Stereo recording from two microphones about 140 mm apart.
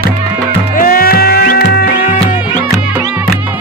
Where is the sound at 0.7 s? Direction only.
90° left.